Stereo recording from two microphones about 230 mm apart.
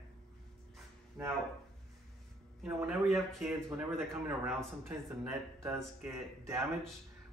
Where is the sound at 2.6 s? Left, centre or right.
Centre.